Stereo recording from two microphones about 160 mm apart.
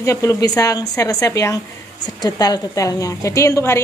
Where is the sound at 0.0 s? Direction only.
20° left (ahead or behind).